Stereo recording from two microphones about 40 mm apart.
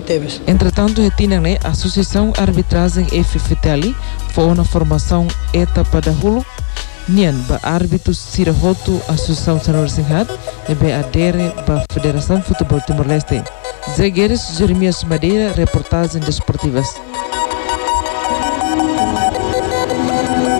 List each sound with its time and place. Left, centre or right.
0.1 s speech: right
13.8 s music: right